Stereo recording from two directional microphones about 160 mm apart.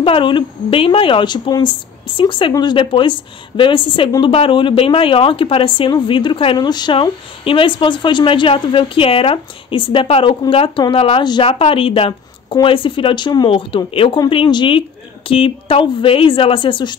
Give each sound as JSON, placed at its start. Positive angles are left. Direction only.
{"t": 0.0, "sound": "speech", "side_deg": 30}